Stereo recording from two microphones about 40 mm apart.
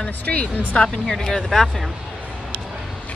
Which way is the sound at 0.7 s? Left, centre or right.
Centre.